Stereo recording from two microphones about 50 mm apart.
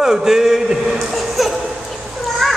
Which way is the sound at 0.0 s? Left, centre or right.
Centre.